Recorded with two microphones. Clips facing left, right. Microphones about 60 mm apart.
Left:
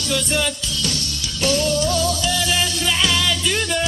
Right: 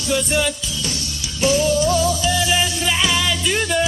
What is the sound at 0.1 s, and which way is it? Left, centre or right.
Music, centre.